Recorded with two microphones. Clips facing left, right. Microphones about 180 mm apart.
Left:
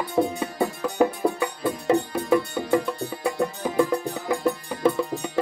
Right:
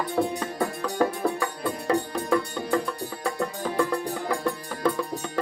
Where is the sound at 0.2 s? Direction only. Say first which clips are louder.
Left 4 dB; 20° left (ahead or behind).